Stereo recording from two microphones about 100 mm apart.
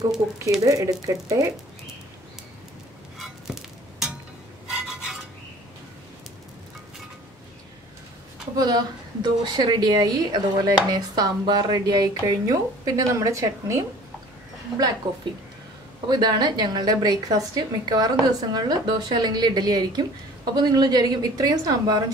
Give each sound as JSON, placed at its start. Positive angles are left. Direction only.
{"t": 0.2, "sound": "speech", "side_deg": -25}
{"t": 0.7, "sound": "a woman's voice", "side_deg": -35}
{"t": 3.2, "sound": "a sound", "side_deg": -5}
{"t": 4.6, "sound": "rub", "side_deg": -5}
{"t": 8.5, "sound": "a woman's voice", "side_deg": -45}
{"t": 15.0, "sound": "a woman's voice", "side_deg": -45}